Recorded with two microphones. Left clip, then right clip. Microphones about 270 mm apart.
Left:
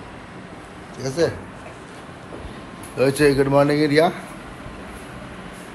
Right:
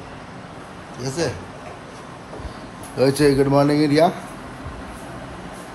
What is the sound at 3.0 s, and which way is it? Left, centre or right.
A man's voice, centre.